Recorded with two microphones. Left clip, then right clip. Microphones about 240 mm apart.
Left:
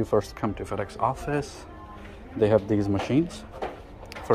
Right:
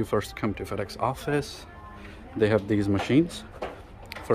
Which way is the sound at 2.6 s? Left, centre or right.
Centre.